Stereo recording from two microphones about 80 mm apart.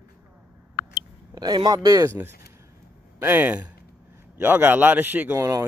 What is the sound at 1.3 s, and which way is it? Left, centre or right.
Speech, right.